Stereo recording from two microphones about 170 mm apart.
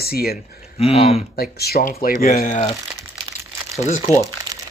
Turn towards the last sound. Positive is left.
turn(degrees=40)  # may be behind; listen again after turning